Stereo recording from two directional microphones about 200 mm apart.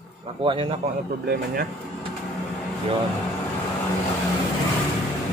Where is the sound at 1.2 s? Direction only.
50° right (ahead or behind).